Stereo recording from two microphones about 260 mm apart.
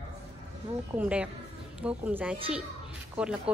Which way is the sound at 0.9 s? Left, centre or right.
Centre.